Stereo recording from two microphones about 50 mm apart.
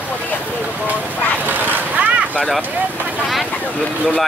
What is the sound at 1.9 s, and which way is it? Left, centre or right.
Boat, right.